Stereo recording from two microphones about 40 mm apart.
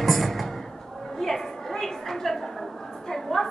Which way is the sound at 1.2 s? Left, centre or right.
Centre.